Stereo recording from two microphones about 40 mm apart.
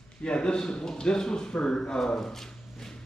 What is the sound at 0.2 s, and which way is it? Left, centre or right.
Speech, left.